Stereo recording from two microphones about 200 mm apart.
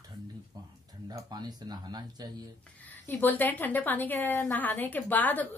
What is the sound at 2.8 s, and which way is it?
A woman's voice, 10° left (ahead or behind).